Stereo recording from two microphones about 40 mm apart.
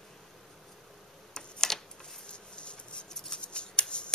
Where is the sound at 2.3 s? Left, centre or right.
Left.